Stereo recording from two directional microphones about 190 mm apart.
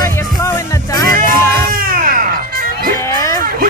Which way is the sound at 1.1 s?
50° right (ahead or behind).